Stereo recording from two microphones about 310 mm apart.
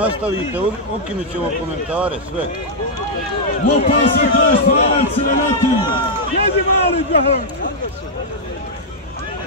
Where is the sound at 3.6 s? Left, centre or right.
Left.